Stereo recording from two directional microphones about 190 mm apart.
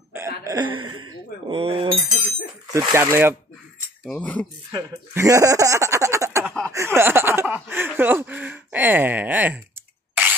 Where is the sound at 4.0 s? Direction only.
5° left (ahead or behind).